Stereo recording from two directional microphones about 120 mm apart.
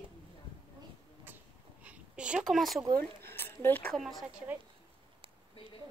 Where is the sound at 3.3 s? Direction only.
20° left (ahead or behind).